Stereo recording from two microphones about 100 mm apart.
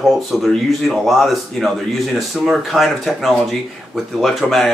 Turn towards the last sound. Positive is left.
turn(degrees=0)  # may be behind; listen again after turning